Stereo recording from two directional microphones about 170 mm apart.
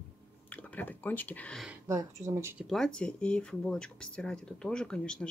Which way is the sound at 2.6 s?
5° left (ahead or behind).